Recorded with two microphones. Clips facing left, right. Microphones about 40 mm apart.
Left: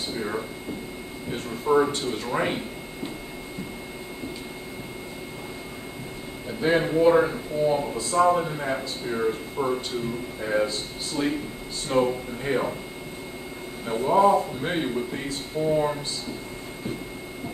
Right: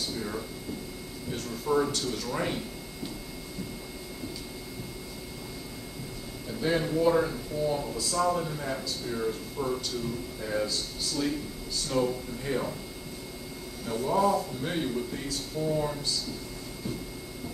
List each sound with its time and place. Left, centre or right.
0.1 s a sound: left
1.3 s speech: left
6.6 s speech: left
13.8 s speech: left